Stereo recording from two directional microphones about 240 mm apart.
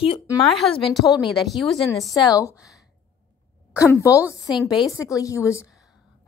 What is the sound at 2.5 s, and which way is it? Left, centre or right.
Speech, centre.